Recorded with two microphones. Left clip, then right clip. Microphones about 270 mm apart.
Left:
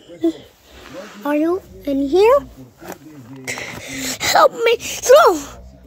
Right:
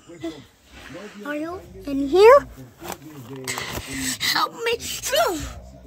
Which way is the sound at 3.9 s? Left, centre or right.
Centre.